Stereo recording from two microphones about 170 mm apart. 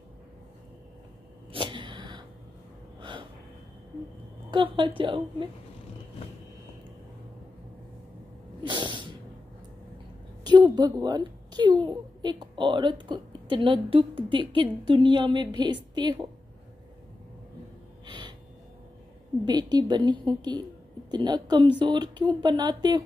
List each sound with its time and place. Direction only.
1.5 s a sound: 30° right (ahead or behind)
3.0 s gasp: 30° right (ahead or behind)
4.5 s speech: 30° right (ahead or behind)
8.6 s sneeze: 25° right (ahead or behind)
10.4 s a child's voice: 25° right (ahead or behind)
18.0 s gasp: 30° right (ahead or behind)
19.4 s speech: 25° right (ahead or behind)